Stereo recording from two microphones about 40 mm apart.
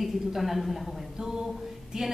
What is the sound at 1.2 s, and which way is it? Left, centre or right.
Speech, centre.